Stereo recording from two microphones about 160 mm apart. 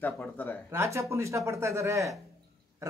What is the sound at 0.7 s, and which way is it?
A man's voice, 20° right (ahead or behind).